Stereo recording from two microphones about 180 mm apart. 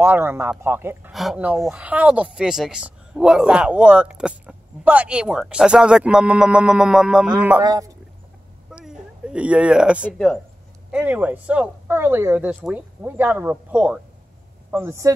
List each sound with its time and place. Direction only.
0.0 s speech: 15° right (ahead or behind)
7.6 s speech: 20° right (ahead or behind)
8.7 s a sound: 5° right (ahead or behind)
10.1 s speech: centre (ahead or behind)
10.9 s speech: 10° right (ahead or behind)